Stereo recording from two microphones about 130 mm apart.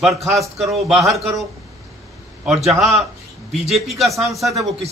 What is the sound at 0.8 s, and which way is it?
Speech, centre (ahead or behind).